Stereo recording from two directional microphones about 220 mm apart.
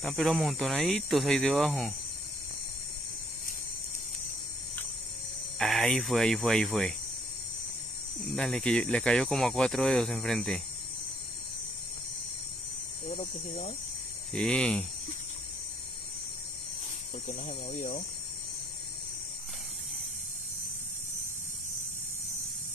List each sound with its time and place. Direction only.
0.0 s speech: centre (ahead or behind)
5.6 s speech: centre (ahead or behind)
8.4 s speech: 5° left (ahead or behind)
13.1 s speech: 35° left (ahead or behind)
14.3 s speech: 5° left (ahead or behind)
17.3 s speech: 35° left (ahead or behind)